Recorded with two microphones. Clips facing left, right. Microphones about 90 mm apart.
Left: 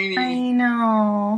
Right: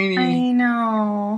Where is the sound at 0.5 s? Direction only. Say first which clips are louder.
Even; centre (ahead or behind).